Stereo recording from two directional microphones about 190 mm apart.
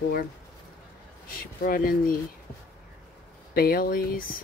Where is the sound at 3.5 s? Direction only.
50° left (ahead or behind).